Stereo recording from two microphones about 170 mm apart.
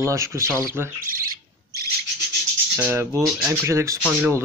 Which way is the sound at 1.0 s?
55° right (ahead or behind).